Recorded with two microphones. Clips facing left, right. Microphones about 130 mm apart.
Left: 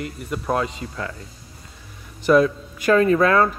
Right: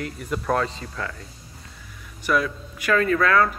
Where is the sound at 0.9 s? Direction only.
25° left (ahead or behind).